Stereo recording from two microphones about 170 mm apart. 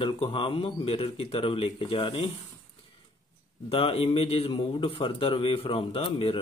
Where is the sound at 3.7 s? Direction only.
35° left (ahead or behind).